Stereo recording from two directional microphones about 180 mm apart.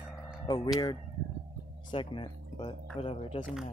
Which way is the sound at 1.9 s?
25° left (ahead or behind).